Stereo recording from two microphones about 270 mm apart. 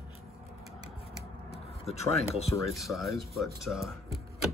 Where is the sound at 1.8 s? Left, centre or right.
Left.